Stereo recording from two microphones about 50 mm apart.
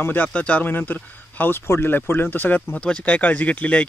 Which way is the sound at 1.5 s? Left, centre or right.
Left.